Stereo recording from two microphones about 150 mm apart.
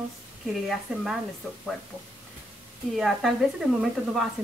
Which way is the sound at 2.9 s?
Centre (ahead or behind).